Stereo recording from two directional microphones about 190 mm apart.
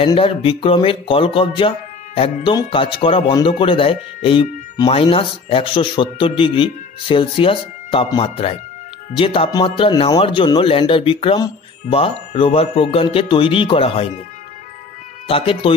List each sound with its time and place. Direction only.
0.0 s speech: 30° left (ahead or behind)
15.2 s speech: 30° left (ahead or behind)